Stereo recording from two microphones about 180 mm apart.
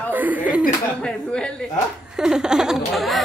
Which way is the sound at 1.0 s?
5° left (ahead or behind).